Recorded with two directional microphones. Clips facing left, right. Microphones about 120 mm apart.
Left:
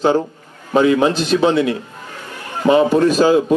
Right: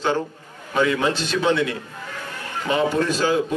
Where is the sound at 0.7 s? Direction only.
30° left (ahead or behind).